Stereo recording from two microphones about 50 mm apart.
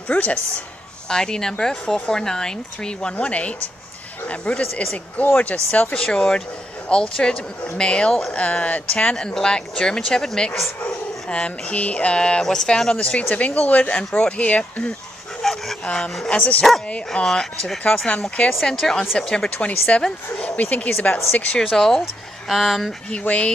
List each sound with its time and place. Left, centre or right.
0.1 s speech: left
1.0 s speech: centre; by 5.9 s left
5.9 s speech: centre
9.1 s speech: centre
12.9 s speech: left
16.3 s speech: left
17.1 s speech: centre
17.9 s speech: left
18.5 s speech: centre
19.1 s speech: centre
21.0 s speech: left
21.7 s speech: centre
23.1 s speech: left